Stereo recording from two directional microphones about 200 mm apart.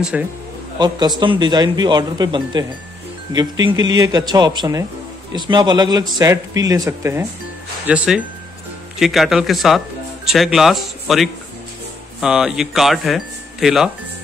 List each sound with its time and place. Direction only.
0.1 s speech: 5° right (ahead or behind)
0.7 s speech: 20° right (ahead or behind); by 13.8 s centre (ahead or behind)